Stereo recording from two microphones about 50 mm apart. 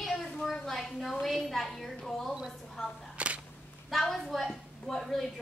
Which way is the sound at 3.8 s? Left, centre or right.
Centre.